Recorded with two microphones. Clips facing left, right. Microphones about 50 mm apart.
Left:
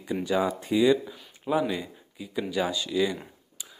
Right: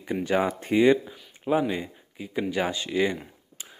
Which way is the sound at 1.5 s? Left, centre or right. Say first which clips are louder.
Right 2 dB; right.